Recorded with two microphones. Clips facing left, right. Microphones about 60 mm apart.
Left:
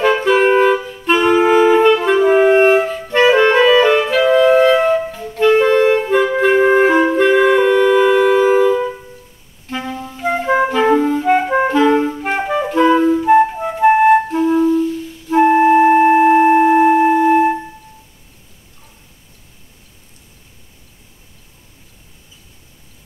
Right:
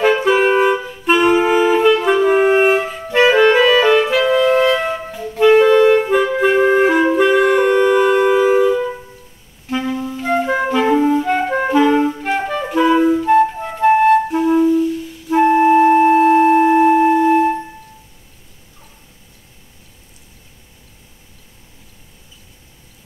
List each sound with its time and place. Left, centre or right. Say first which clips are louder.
0.2 s music: left 1 dB; centre
1.0 s clarinet: even; centre
1.4 s music: left 3 dB; centre
5.6 s clarinet: right 2 dB; centre
6.2 s music: left 1 dB; centre
9.7 s clarinet: right 4 dB; centre
11.2 s clarinet: left 3 dB; centre
12.6 s clarinet: left 1 dB; centre
13.2 s music: left 2 dB; centre
14.3 s clarinet: even; centre
15.3 s music: left 1 dB; centre